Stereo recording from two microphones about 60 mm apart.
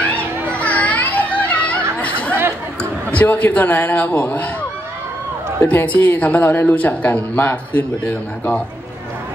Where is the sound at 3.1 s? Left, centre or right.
Left.